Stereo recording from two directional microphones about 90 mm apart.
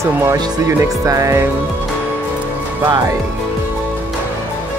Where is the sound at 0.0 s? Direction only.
35° right (ahead or behind).